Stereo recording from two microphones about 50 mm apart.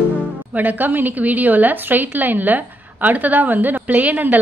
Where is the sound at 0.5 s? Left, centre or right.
Right.